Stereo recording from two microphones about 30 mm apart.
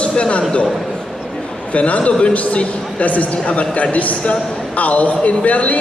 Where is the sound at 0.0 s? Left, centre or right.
Left.